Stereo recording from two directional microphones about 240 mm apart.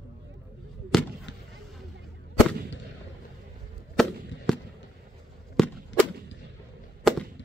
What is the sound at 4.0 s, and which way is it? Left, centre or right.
Fireworks, centre.